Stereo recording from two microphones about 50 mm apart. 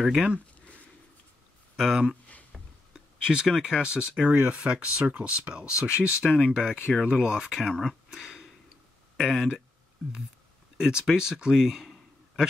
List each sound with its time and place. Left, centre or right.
1.8 s speech: centre
5.5 s speech: centre
7.6 s speech: centre
8.1 s a sound: centre
9.1 s speech: centre
10.8 s speech: centre